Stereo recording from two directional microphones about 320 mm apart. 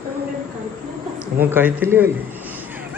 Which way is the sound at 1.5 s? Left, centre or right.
Centre.